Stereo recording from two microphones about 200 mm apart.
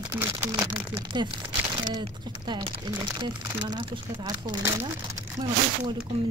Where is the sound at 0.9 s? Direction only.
25° right (ahead or behind).